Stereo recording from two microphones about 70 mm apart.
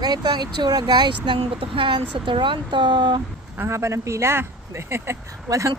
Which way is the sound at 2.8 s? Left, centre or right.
Right.